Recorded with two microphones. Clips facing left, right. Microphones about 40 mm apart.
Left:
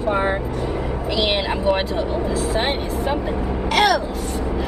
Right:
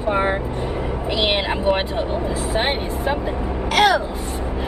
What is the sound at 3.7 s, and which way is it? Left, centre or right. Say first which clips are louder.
Vehicle: right 1 dB; centre.